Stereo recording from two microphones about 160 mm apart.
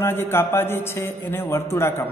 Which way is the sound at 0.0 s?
15° left (ahead or behind).